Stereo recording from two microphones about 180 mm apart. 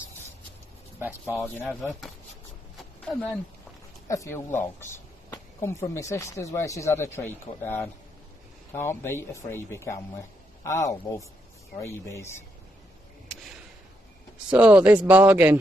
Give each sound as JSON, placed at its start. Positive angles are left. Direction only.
{"t": 0.9, "sound": "speech", "side_deg": -10}
{"t": 1.7, "sound": "speech", "side_deg": 0}
{"t": 2.8, "sound": "a sound", "side_deg": 5}
{"t": 4.1, "sound": "speech", "side_deg": 15}
{"t": 14.5, "sound": "speech", "side_deg": -10}